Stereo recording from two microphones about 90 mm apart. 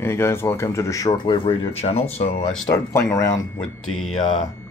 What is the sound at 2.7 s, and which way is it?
Speech, 35° left (ahead or behind).